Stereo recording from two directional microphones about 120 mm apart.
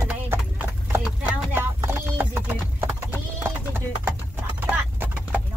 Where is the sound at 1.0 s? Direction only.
10° right (ahead or behind).